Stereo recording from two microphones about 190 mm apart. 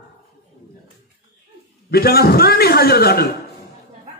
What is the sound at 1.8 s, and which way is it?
A man's voice, 55° left (ahead or behind).